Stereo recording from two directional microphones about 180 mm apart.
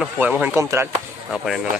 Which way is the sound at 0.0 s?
10° right (ahead or behind).